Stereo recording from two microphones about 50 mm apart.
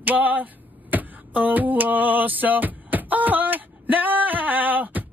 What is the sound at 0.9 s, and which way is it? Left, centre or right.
Music, right.